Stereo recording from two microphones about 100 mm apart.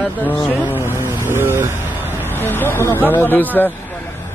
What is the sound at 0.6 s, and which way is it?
Speech, 25° right (ahead or behind).